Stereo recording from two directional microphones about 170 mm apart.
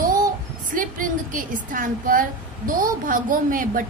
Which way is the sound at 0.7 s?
50° right (ahead or behind).